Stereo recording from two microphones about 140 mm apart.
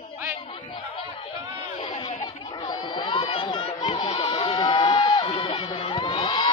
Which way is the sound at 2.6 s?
30° left (ahead or behind).